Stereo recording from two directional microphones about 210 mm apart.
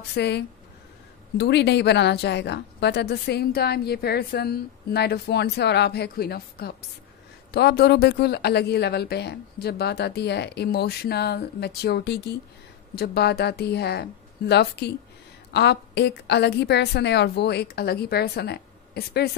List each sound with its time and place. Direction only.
0.1 s a woman's voice: 55° left (ahead or behind)